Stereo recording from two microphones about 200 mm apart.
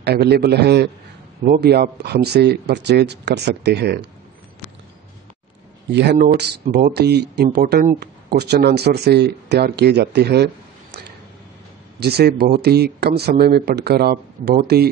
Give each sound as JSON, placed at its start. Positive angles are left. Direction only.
{"t": 0.0, "sound": "speech", "side_deg": -55}
{"t": 5.9, "sound": "speech", "side_deg": -60}